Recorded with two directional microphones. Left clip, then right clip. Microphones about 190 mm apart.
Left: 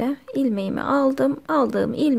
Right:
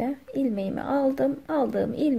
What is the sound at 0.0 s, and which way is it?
Speech, 25° left (ahead or behind).